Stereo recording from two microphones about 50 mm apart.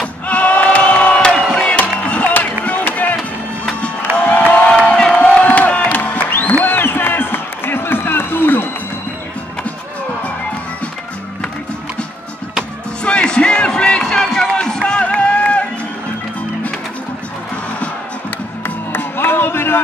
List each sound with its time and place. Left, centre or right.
0.0 s battle cry: left
1.4 s music: centre
1.7 s music: left
4.4 s a sound: left
4.9 s crowd: left
6.3 s a sound: left
13.0 s music: centre
18.9 s music: left